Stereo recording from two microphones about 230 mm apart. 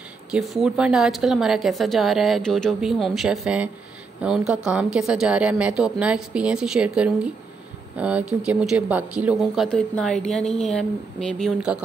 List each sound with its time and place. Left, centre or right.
0.3 s speech: centre